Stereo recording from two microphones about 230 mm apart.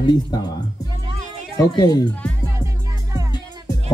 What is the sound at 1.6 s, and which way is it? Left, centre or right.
Speech, centre.